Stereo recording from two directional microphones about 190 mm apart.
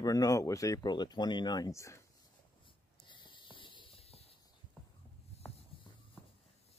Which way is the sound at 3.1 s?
25° left (ahead or behind).